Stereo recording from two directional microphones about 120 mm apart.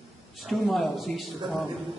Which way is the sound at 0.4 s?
Centre (ahead or behind).